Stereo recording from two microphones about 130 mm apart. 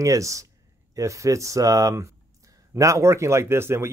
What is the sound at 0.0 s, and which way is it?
Speech, 25° right (ahead or behind).